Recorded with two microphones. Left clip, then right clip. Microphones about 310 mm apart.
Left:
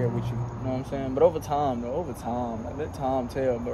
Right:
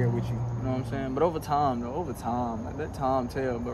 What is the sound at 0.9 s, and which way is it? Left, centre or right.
Speech, centre.